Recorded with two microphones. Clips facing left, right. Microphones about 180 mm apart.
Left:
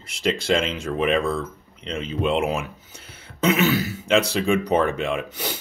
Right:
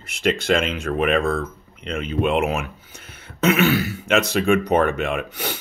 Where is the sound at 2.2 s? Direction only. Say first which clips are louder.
Right 1 dB; 35° left (ahead or behind).